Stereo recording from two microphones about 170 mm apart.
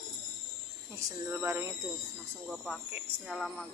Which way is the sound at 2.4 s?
5° right (ahead or behind).